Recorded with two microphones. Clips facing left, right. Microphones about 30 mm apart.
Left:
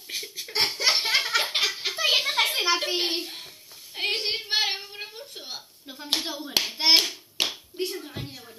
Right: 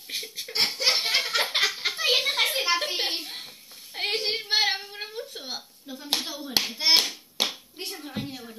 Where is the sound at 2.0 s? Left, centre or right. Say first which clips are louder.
Left 1 dB; left.